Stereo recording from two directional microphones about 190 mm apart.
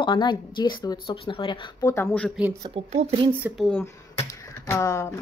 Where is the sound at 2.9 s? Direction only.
35° right (ahead or behind).